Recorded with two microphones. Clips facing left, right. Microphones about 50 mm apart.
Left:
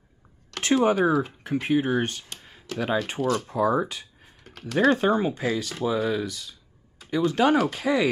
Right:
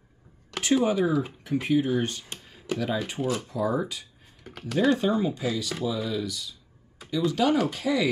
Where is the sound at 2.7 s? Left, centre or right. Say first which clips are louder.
Right 1 dB; centre.